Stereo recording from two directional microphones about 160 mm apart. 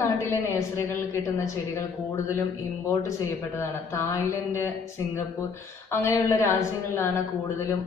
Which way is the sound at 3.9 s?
20° left (ahead or behind).